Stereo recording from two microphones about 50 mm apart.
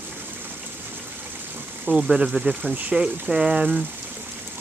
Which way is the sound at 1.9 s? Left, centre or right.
Centre.